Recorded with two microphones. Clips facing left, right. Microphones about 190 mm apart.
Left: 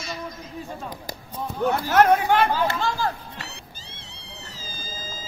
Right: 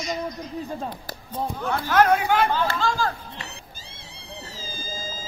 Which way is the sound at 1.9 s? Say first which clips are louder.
Left 1 dB; 25° left (ahead or behind).